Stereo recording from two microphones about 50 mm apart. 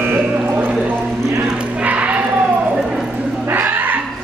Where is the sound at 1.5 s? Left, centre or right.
Right.